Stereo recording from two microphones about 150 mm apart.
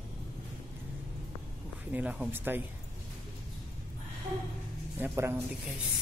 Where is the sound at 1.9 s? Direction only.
10° right (ahead or behind).